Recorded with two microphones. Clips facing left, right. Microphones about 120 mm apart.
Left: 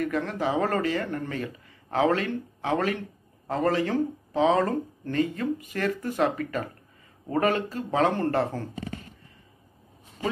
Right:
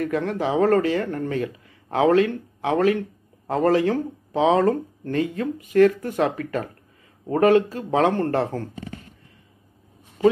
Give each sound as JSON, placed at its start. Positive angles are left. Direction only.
{"t": 0.0, "sound": "speech", "side_deg": -50}